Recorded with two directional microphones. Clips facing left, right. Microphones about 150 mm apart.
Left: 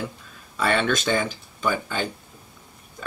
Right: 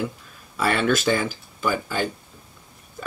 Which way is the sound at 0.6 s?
5° right (ahead or behind).